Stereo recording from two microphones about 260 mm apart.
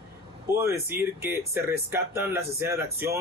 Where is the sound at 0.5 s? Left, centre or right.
Centre.